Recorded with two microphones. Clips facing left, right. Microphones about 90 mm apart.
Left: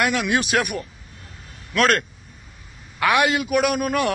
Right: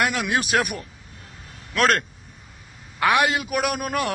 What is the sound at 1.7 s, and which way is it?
A man's voice, 30° right (ahead or behind).